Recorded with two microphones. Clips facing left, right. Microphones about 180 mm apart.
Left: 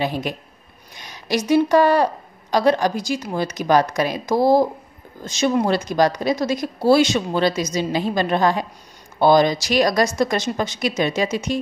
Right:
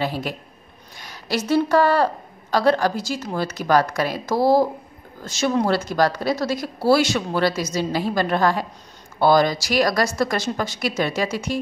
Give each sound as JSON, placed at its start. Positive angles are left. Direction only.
{"t": 0.0, "sound": "a woman's voice", "side_deg": 20}